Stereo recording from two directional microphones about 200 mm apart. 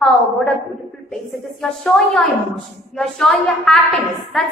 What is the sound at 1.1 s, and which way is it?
A woman's voice, centre (ahead or behind).